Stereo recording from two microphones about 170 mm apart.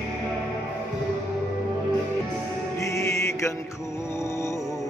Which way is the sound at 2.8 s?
15° left (ahead or behind).